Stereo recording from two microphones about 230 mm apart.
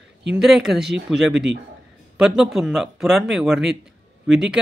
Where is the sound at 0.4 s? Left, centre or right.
Centre.